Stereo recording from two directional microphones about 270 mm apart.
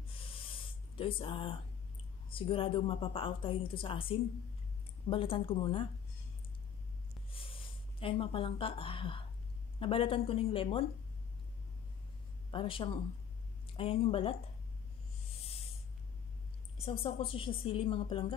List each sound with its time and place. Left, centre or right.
0.2 s snort: centre
0.9 s a woman's voice: centre
7.2 s a sound: centre
9.8 s a woman's voice: centre
12.4 s a woman's voice: centre
16.7 s a woman's voice: left